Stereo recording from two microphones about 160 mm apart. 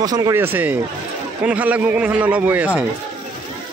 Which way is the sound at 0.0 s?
20° right (ahead or behind).